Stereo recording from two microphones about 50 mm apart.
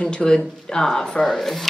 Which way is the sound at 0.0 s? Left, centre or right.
Centre.